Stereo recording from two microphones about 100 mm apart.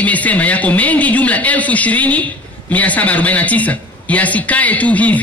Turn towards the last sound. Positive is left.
turn(degrees=15)  # may be behind; listen again after turning